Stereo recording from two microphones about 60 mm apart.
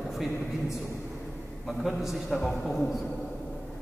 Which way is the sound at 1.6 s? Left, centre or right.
Centre.